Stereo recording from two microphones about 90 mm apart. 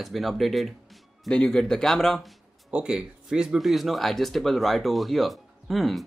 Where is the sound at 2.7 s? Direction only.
10° right (ahead or behind).